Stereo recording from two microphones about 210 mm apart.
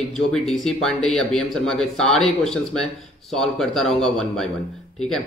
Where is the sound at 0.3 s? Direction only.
5° left (ahead or behind).